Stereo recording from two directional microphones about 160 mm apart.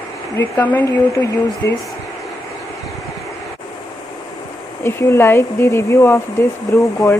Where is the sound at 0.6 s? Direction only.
10° left (ahead or behind).